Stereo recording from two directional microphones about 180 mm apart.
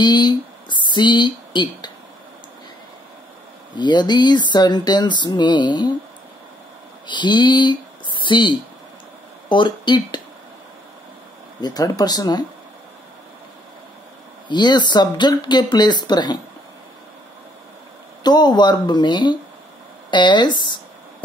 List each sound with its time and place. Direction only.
0.0 s speech: 25° left (ahead or behind)
3.7 s speech: 25° left (ahead or behind)
7.1 s speech: 25° left (ahead or behind)
11.6 s speech: 20° left (ahead or behind)
14.5 s speech: 25° left (ahead or behind)
18.2 s speech: 25° left (ahead or behind)